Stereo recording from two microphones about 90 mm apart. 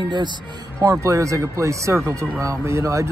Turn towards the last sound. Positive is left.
turn(degrees=-35)  # may be behind; listen again after turning